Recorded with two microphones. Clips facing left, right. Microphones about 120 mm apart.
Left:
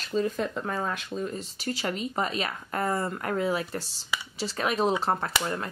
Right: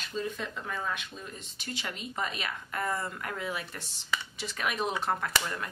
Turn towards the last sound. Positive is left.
turn(degrees=35)  # may be behind; listen again after turning